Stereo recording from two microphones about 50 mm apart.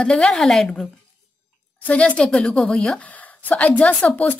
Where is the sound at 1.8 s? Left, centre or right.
Left.